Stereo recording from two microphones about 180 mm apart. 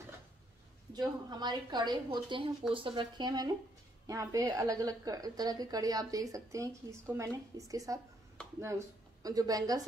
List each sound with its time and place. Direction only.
0.9 s a woman's voice: 25° right (ahead or behind)